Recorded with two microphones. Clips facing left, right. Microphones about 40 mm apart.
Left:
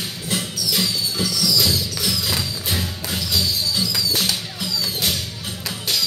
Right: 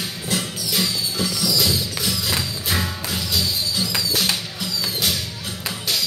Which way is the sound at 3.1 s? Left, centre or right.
Centre.